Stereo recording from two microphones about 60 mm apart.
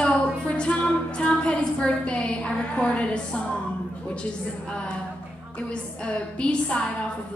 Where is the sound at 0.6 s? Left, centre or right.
Centre.